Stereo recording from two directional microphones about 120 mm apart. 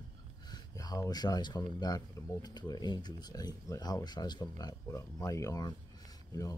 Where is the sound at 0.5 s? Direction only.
30° left (ahead or behind).